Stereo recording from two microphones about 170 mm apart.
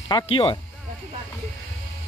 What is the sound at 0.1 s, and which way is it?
Speech, 30° left (ahead or behind).